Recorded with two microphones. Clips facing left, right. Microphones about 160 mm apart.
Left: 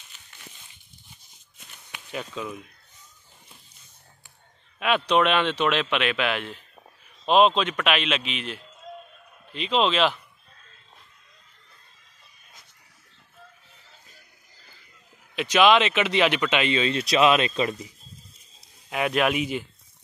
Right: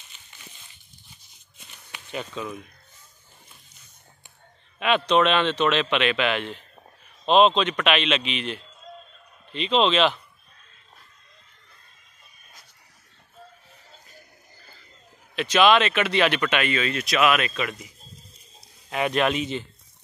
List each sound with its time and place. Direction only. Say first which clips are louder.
1.9 s speech: right 1 dB; 5° left (ahead or behind)
4.7 s a man's voice: right 1 dB; 5° left (ahead or behind)
15.3 s speech: even; 15° left (ahead or behind); by 17.8 s 30° left (ahead or behind)
18.9 s speech: even; 5° left (ahead or behind)